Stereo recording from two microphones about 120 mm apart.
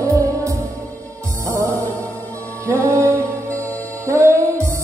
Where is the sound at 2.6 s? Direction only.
25° right (ahead or behind).